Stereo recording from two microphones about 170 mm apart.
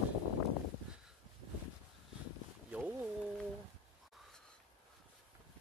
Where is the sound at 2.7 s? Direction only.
10° right (ahead or behind).